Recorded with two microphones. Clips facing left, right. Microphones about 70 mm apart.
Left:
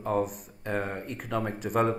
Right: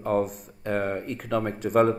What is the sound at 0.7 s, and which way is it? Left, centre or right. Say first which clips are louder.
Speech: right 4 dB; right.